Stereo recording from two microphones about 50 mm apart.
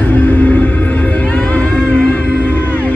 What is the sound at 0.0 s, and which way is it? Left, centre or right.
Music, left.